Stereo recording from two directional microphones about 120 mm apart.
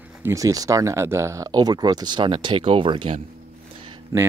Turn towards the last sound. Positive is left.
turn(degrees=-25)  # may be behind; listen again after turning